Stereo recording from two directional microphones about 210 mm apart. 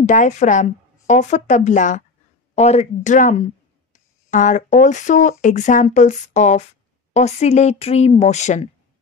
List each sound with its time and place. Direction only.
0.0 s a woman's voice: 35° left (ahead or behind)